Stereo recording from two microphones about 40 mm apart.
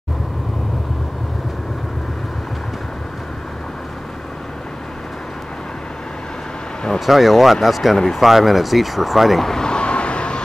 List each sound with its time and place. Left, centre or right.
7.1 s speech: centre
9.5 s vehicle: centre